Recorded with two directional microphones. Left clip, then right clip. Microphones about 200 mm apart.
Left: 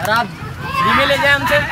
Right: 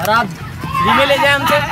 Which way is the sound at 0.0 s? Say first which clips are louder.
Right 2 dB; 10° right (ahead or behind).